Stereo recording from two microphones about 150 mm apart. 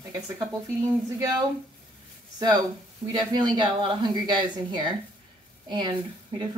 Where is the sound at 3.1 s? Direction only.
30° right (ahead or behind).